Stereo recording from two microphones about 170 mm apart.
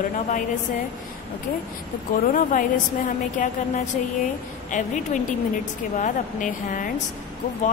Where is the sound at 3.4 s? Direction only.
50° left (ahead or behind).